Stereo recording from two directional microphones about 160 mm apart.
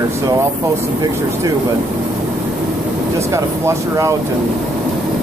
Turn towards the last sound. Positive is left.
turn(degrees=-20)  # may be behind; listen again after turning